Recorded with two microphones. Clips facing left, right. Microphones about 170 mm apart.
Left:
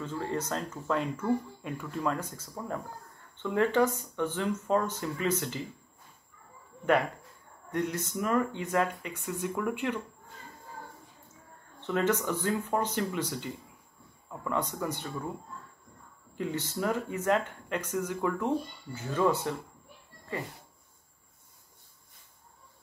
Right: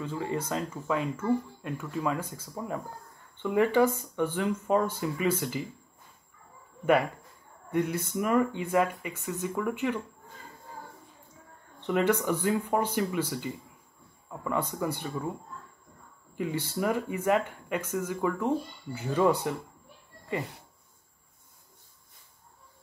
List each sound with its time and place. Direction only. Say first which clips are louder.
0.0 s speech: right 1 dB; 10° right (ahead or behind)
7.7 s speech: right 3 dB; 10° right (ahead or behind)
11.8 s speech: right 2 dB; 15° right (ahead or behind)
16.3 s speech: right 2 dB; 10° right (ahead or behind)